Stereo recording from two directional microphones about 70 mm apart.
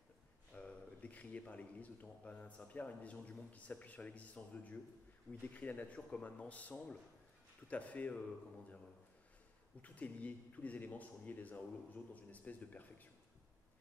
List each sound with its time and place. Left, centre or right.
0.5 s a sound: centre
1.5 s a man's voice: left
9.8 s a man's voice: left